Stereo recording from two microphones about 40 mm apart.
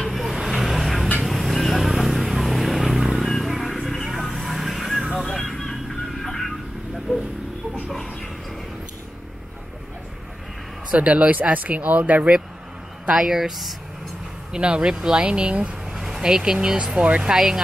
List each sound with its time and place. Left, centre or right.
0.0 s vehicle: centre
3.3 s vehicle: centre
5.2 s music: centre
10.9 s speech: right
13.1 s speech: centre
14.5 s speech: right
15.9 s speech: centre; by 17.2 s right